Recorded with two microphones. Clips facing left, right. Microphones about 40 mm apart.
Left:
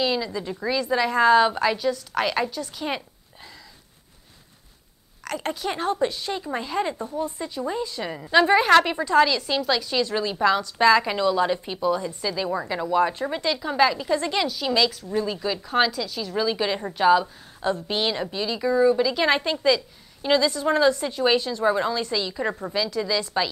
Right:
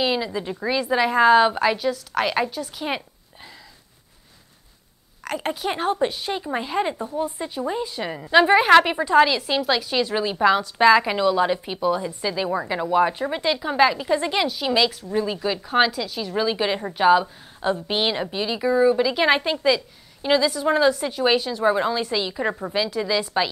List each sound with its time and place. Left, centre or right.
0.0 s a woman's voice: right
5.2 s a woman's voice: centre